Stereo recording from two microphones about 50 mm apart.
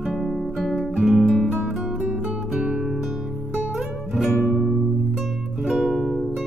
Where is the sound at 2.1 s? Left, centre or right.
Right.